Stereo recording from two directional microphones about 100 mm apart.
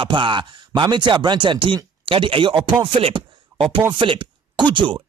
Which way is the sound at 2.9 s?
65° right (ahead or behind).